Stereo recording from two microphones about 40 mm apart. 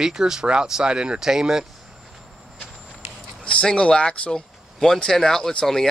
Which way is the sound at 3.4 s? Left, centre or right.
Left.